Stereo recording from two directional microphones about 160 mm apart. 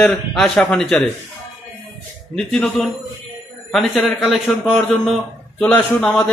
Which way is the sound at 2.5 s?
Centre (ahead or behind).